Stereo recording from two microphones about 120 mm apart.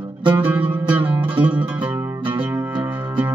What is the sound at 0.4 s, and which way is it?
Music, 15° right (ahead or behind).